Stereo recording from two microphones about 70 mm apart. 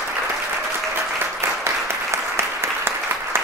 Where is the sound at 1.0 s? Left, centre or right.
Right.